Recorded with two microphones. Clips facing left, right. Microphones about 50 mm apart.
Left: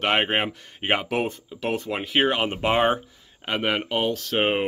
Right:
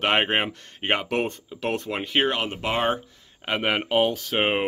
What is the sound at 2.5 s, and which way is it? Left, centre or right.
Speech, left.